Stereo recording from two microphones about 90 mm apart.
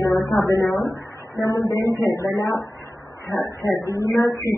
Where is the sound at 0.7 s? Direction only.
40° left (ahead or behind).